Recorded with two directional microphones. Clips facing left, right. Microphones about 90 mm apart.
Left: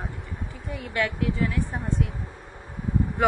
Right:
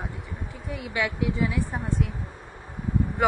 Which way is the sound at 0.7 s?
5° right (ahead or behind).